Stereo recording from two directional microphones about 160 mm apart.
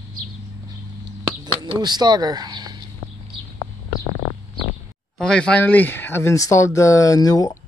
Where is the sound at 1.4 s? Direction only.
25° right (ahead or behind).